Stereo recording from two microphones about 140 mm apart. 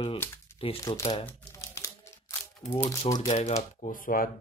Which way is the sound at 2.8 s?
25° left (ahead or behind).